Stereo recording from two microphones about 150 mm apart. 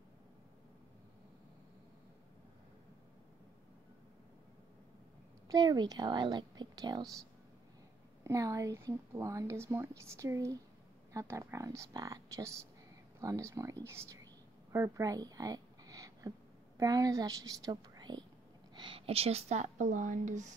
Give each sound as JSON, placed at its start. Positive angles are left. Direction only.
{"t": 5.5, "sound": "a woman's voice", "side_deg": -25}
{"t": 8.2, "sound": "a woman's voice", "side_deg": -20}
{"t": 13.8, "sound": "whispering", "side_deg": -20}
{"t": 18.8, "sound": "speech", "side_deg": -35}